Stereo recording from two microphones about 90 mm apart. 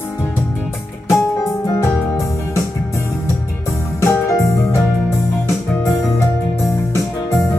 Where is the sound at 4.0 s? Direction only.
35° left (ahead or behind).